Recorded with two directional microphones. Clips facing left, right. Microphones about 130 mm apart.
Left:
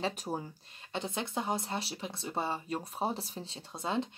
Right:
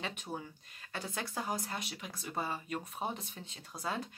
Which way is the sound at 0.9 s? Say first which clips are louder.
Left 4 dB; 25° left (ahead or behind).